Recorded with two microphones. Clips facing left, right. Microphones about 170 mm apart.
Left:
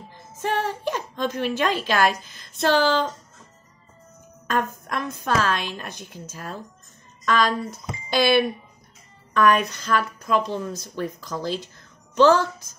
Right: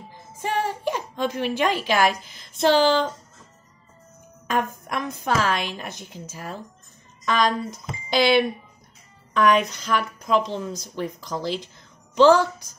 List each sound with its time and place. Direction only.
0.1 s a woman's voice: 15° right (ahead or behind)
4.5 s a woman's voice: 15° right (ahead or behind)